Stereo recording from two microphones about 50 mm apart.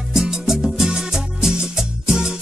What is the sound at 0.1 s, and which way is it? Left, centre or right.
Music, centre.